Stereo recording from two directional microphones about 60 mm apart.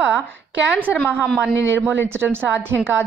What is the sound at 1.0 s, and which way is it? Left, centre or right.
Speech, left.